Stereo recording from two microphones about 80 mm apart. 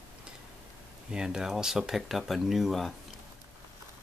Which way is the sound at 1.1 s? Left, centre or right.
Centre.